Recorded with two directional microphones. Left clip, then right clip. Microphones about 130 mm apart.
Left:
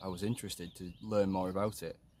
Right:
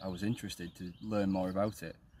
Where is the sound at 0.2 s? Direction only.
50° left (ahead or behind).